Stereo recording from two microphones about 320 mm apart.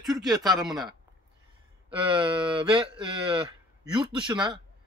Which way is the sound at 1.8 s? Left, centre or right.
Centre.